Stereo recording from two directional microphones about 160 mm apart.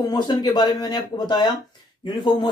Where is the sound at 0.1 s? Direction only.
25° left (ahead or behind).